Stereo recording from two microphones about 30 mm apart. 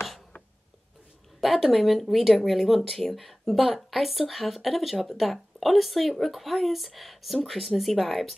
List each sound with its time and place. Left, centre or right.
1.4 s speech: centre